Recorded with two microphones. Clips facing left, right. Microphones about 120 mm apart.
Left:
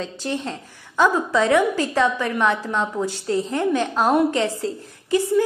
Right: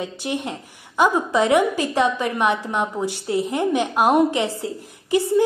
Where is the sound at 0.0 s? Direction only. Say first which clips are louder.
Even; 15° right (ahead or behind).